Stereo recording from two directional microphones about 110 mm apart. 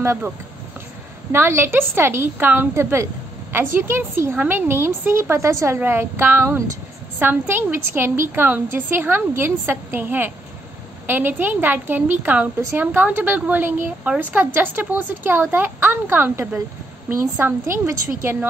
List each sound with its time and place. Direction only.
0.0 s speech: 25° right (ahead or behind)
1.3 s a woman's voice: 25° right (ahead or behind)